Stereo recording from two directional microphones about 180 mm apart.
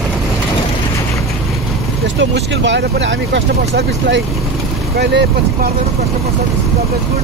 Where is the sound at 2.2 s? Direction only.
85° right.